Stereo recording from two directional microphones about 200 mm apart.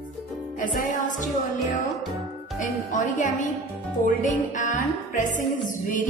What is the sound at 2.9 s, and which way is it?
Music, 40° left (ahead or behind).